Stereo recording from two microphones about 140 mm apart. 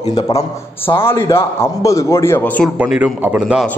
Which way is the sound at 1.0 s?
20° left (ahead or behind).